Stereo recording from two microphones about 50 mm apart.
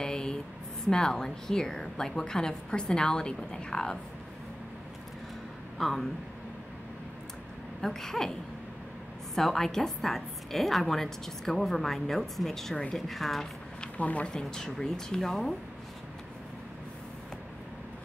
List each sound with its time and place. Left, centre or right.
0.0 s a sound: centre
0.8 s a woman's voice: centre
5.8 s speech: centre
7.8 s a woman's voice: centre
9.3 s a woman's voice: centre
13.9 s speech: left
14.2 s a woman's voice: centre